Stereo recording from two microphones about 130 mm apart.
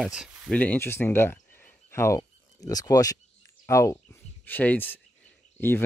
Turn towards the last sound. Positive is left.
turn(degrees=15)  # may be behind; listen again after turning